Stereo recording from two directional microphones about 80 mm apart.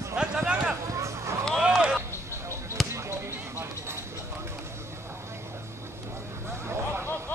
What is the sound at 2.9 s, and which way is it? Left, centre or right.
Basketball bounce, right.